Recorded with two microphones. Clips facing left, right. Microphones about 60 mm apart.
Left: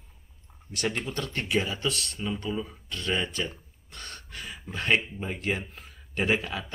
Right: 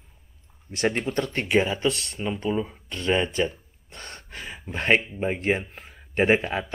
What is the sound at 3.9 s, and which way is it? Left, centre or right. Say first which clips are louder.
Gasp: right 2 dB; right.